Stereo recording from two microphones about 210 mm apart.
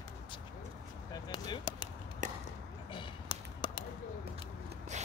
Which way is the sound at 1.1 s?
20° left (ahead or behind).